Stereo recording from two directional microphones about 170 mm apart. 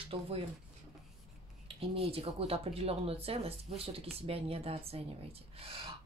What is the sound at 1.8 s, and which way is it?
Speech, 35° right (ahead or behind).